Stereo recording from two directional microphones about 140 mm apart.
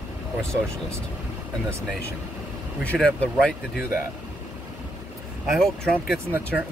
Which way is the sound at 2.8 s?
10° left (ahead or behind).